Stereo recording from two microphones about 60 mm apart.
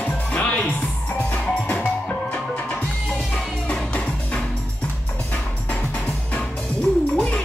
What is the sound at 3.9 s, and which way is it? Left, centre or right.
Music, centre.